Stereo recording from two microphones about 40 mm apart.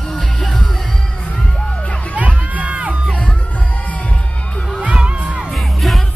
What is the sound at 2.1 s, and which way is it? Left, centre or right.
Music, right.